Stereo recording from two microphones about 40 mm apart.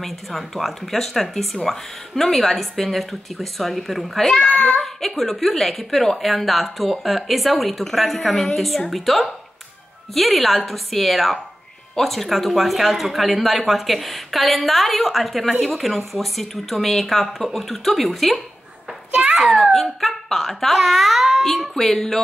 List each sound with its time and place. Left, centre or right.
0.0 s speech: centre
4.6 s a child's voice: centre
5.0 s speech: centre
21.7 s music: centre